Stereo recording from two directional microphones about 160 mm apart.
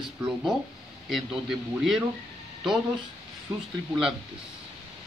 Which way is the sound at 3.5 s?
15° right (ahead or behind).